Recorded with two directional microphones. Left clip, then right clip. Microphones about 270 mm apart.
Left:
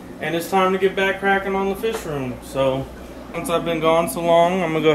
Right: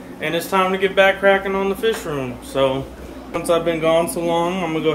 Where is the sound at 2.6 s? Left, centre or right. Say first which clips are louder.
Right 2 dB; centre.